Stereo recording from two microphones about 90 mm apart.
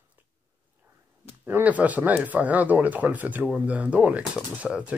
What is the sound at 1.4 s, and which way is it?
Speech, 20° right (ahead or behind).